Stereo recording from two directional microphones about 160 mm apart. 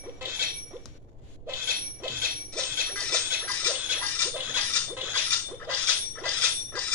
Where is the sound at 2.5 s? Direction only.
5° left (ahead or behind).